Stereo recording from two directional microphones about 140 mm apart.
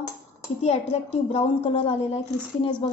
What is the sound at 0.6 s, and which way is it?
A woman's voice, 50° left (ahead or behind).